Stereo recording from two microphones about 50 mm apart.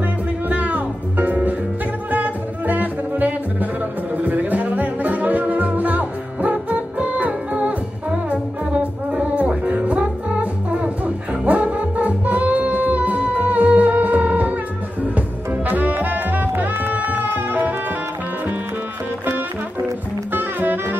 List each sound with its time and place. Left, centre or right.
0.5 s music: right
20.3 s jazz: right